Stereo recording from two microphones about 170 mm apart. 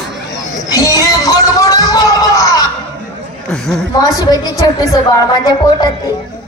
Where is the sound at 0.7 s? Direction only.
20° left (ahead or behind).